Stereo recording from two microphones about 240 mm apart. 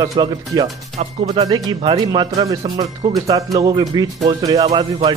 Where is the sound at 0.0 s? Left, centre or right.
Centre.